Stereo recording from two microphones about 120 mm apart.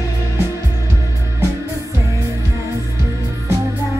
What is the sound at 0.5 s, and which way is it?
Music, 25° right (ahead or behind).